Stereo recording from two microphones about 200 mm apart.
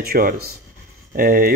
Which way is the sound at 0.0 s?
45° right (ahead or behind).